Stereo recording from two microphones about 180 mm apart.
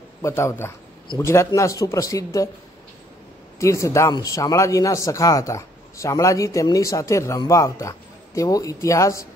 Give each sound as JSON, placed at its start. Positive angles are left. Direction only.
{"t": 0.2, "sound": "speech", "side_deg": 15}
{"t": 3.5, "sound": "speech", "side_deg": 15}